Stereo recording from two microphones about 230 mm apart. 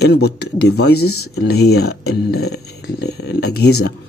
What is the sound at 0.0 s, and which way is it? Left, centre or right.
Speech, left.